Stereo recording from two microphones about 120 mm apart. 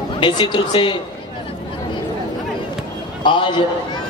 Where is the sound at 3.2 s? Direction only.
40° left (ahead or behind).